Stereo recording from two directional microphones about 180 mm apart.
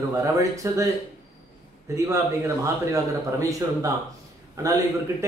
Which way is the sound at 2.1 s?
15° right (ahead or behind).